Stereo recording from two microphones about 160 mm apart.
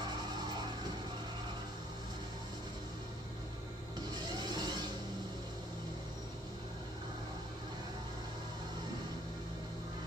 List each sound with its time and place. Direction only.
4.1 s vehicle: 25° right (ahead or behind)